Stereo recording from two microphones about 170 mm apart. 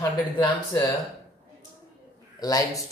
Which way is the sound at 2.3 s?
20° left (ahead or behind).